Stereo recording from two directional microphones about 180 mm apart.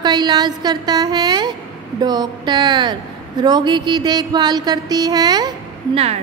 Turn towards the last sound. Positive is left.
turn(degrees=-25)  # may be behind; listen again after turning